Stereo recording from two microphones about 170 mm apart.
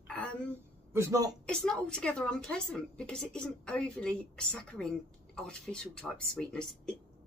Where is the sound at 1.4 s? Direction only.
5° left (ahead or behind).